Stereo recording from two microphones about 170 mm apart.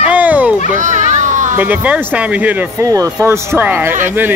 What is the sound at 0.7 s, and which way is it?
Speech, 45° right (ahead or behind).